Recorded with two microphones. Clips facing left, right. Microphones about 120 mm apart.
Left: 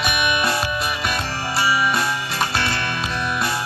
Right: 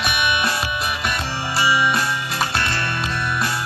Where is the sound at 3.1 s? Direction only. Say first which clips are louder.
Even; 20° left (ahead or behind).